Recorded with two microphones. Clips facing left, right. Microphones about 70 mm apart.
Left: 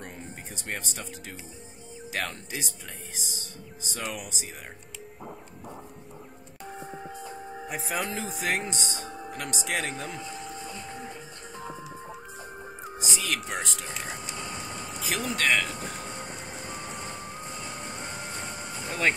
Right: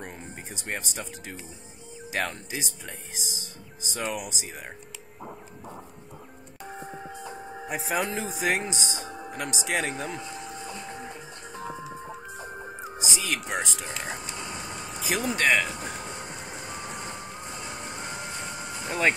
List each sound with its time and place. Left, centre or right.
0.6 s speech: centre
7.6 s speech: centre
10.4 s printer: right
12.8 s speech: centre
14.3 s a sound: centre
16.3 s vehicle: centre